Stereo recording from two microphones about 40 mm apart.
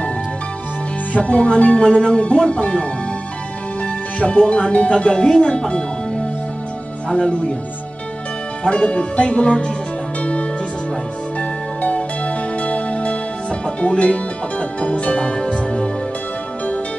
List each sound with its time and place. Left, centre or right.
1.1 s speech: left
8.6 s speech: left
11.3 s music: left